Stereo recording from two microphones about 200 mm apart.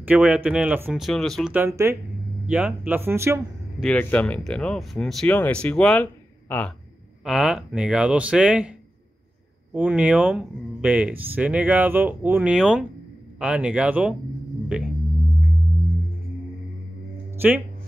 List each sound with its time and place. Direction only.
0.0 s speech: 5° right (ahead or behind)
1.5 s speech: 10° right (ahead or behind)
3.8 s speech: 5° left (ahead or behind)
7.2 s speech: 5° right (ahead or behind)
9.8 s speech: 5° right (ahead or behind)